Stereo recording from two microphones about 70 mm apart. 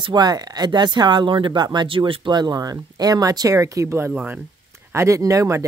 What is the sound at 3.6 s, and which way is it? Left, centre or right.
Speech, right.